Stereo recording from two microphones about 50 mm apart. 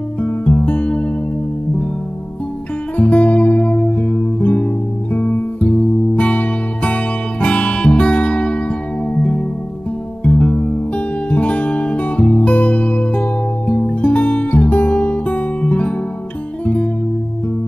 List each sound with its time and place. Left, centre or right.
0.2 s music: left
3.0 s music: left